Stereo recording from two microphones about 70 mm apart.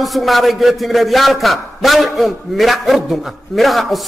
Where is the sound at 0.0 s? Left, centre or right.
Centre.